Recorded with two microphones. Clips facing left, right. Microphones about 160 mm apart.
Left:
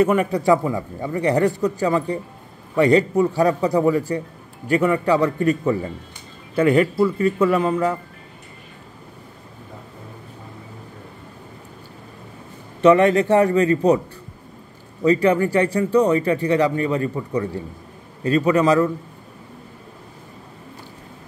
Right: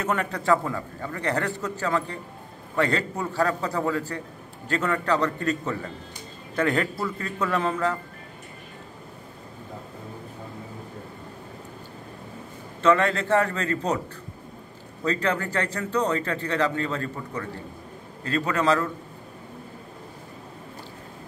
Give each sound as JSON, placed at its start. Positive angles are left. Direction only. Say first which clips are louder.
{"t": 0.0, "sound": "speech", "louder": "left 9 dB", "side_deg": 10}
{"t": 12.8, "sound": "speech", "louder": "left 7 dB", "side_deg": 15}
{"t": 15.0, "sound": "speech", "louder": "left 9 dB", "side_deg": 15}